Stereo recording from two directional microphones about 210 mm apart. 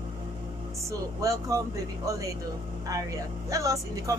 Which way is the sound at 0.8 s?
15° right (ahead or behind).